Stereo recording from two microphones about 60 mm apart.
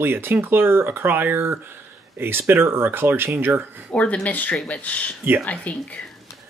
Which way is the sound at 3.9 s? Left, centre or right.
Left.